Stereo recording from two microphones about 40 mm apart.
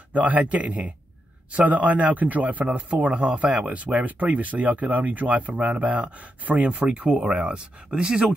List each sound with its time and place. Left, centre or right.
0.1 s a man's voice: right